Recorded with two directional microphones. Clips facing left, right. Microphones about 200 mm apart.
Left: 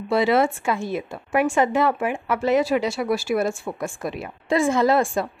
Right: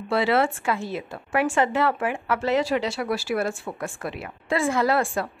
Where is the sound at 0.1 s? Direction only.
15° left (ahead or behind).